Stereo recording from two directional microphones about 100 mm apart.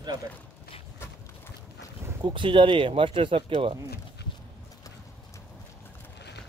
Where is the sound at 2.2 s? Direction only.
55° right (ahead or behind).